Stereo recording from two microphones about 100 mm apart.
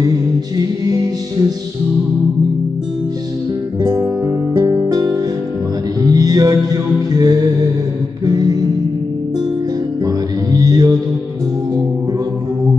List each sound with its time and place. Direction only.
0.6 s music: 40° right (ahead or behind)
3.8 s music: 35° right (ahead or behind)
10.0 s music: 40° right (ahead or behind)